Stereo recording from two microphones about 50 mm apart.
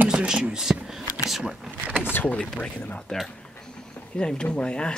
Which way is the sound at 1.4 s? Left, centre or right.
Centre.